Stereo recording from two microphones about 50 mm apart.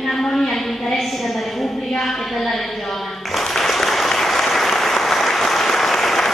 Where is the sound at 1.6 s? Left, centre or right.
Centre.